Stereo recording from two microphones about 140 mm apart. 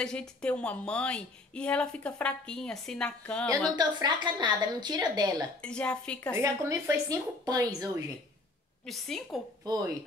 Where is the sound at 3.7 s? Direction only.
30° right (ahead or behind).